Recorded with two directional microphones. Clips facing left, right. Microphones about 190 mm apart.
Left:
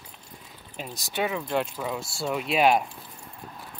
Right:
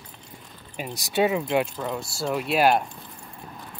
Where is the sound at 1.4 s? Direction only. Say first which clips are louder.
Right 3 dB; 5° right (ahead or behind).